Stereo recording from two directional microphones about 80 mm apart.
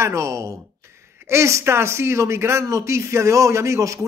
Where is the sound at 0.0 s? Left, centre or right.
Right.